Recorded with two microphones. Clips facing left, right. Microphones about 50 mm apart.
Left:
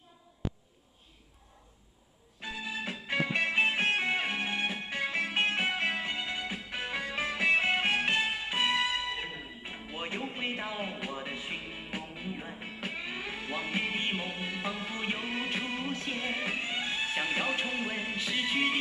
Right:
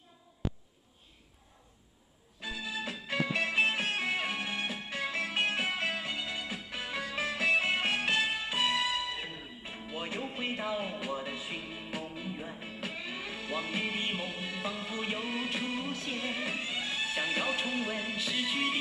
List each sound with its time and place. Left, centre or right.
2.4 s music: left